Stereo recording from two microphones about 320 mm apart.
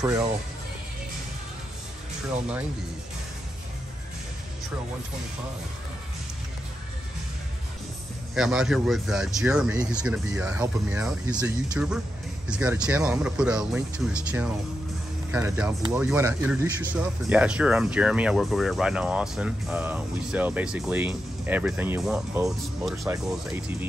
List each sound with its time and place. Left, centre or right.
0.0 s speech: centre
8.4 s speech: centre